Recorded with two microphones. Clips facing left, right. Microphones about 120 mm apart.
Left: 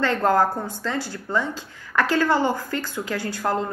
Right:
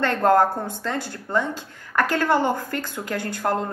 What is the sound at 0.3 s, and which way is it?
A woman's voice, 50° right (ahead or behind).